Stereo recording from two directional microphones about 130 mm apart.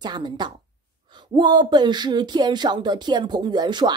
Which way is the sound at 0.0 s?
35° right (ahead or behind).